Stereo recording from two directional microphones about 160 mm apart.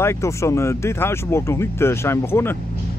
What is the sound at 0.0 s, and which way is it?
Speech, 15° left (ahead or behind).